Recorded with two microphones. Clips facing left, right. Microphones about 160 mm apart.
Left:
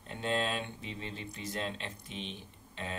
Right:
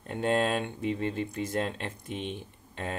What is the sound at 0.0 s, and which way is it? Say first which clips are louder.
Speech: right 6 dB; 50° right (ahead or behind).